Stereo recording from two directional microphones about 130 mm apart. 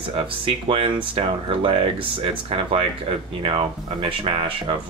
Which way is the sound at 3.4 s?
45° right (ahead or behind).